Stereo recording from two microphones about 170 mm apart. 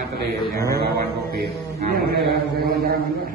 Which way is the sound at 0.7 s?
65° right (ahead or behind).